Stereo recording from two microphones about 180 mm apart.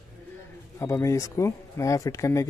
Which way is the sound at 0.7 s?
15° left (ahead or behind).